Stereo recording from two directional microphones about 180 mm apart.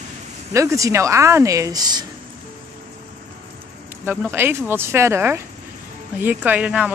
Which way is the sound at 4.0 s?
10° right (ahead or behind).